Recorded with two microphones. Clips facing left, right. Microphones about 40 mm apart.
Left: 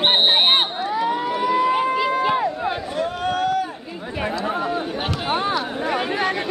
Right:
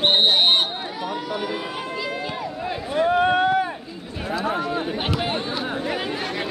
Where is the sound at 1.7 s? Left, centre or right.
Left.